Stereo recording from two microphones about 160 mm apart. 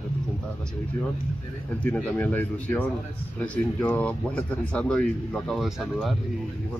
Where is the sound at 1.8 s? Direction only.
10° left (ahead or behind).